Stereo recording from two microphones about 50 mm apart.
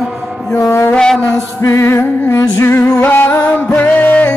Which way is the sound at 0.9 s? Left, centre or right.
Centre.